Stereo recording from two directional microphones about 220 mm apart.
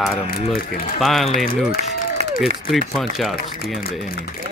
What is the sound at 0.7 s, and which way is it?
Speech, 40° left (ahead or behind).